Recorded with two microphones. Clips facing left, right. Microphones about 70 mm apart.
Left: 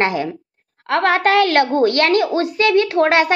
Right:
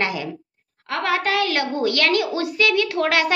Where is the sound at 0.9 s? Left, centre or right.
Left.